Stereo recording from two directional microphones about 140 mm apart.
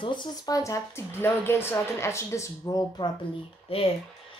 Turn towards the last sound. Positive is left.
turn(degrees=40)  # may be behind; listen again after turning